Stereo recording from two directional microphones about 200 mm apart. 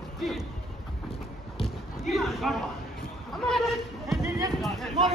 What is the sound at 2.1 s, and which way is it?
A man's voice, centre (ahead or behind).